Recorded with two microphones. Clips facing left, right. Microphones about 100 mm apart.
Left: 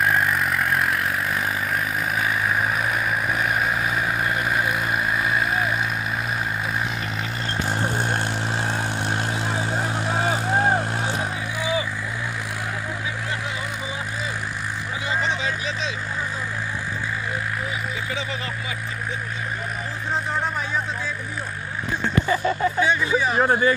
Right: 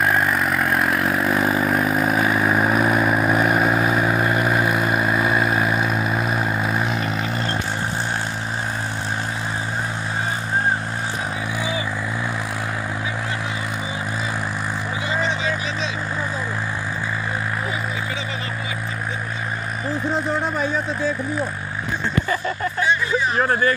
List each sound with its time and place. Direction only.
0.1 s vehicle: 35° right (ahead or behind)
22.3 s vehicle: 15° left (ahead or behind)